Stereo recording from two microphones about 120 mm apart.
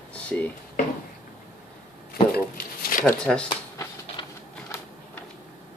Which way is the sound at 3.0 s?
10° left (ahead or behind).